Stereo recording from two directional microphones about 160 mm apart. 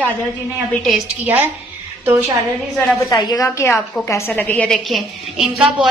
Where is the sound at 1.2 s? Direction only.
10° right (ahead or behind).